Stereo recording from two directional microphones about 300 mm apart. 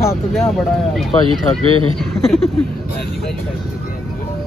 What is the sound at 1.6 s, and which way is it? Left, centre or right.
Speech, left.